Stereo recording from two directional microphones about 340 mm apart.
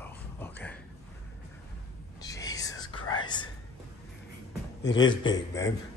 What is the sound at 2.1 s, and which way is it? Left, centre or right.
Whispering, centre.